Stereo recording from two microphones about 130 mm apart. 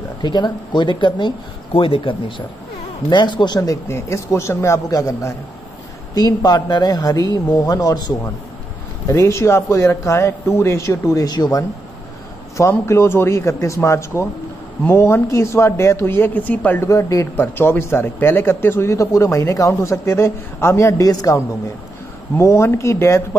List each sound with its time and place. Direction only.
0.2 s speech: 35° left (ahead or behind)
12.5 s speech: 20° left (ahead or behind)
22.4 s speech: 20° left (ahead or behind)